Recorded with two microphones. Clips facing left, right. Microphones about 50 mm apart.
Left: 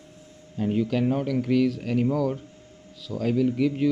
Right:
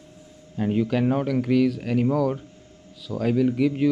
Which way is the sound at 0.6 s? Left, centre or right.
Right.